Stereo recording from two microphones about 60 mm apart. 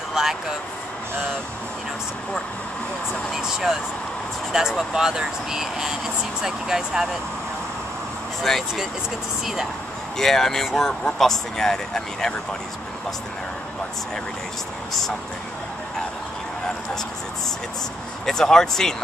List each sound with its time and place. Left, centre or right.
0.1 s a sound: centre
3.3 s speech: centre
8.4 s speech: centre
10.1 s speech: centre
18.2 s speech: centre